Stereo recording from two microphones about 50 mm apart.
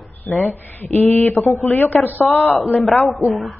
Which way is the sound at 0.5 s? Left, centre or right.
Left.